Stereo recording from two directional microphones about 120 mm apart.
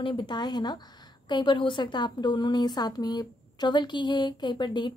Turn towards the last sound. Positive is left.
turn(degrees=40)  # may be behind; listen again after turning